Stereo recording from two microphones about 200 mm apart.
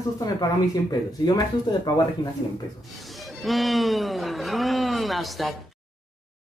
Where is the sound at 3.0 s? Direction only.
Centre (ahead or behind).